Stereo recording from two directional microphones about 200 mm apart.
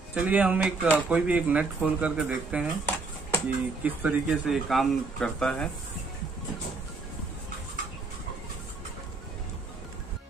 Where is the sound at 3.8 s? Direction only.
5° right (ahead or behind).